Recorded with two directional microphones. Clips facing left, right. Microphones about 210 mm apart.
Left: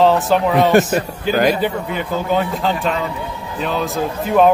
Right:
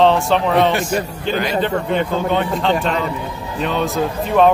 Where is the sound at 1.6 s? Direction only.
5° left (ahead or behind).